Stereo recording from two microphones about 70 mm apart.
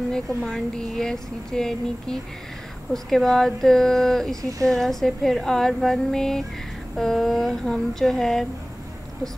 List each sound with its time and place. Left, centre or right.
0.1 s a woman's voice: centre
4.4 s speech: right
4.6 s a woman's voice: centre